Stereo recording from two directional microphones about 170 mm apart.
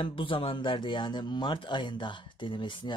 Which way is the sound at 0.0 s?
30° left (ahead or behind).